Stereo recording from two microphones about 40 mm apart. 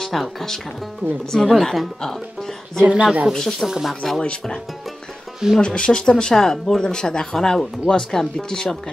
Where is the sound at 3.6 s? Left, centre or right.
Centre.